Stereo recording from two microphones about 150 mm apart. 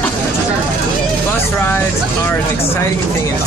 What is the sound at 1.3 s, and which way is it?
Vehicle, 15° left (ahead or behind).